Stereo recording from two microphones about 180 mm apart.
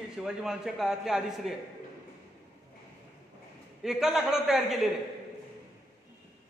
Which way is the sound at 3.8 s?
Centre (ahead or behind).